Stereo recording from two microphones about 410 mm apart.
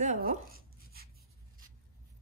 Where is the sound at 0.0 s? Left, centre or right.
Centre.